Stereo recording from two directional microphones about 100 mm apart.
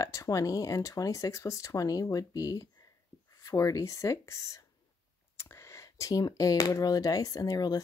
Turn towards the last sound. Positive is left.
turn(degrees=40)  # may be behind; listen again after turning